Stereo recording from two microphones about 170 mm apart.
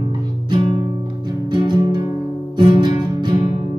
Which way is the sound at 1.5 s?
25° right (ahead or behind).